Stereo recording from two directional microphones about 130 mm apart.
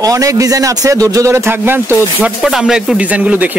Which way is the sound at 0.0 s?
25° right (ahead or behind).